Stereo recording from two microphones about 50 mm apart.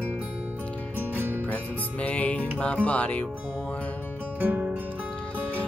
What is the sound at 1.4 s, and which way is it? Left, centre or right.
Music, left.